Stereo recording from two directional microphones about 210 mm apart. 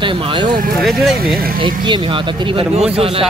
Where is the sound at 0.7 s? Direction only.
Centre (ahead or behind).